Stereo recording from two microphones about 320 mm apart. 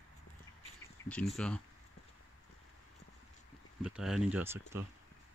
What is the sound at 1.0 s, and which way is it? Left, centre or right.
Speech, centre.